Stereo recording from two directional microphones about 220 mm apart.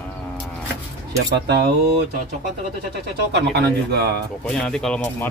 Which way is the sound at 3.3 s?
50° right (ahead or behind).